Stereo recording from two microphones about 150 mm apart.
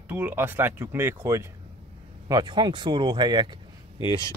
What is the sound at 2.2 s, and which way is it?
Speech, 30° right (ahead or behind).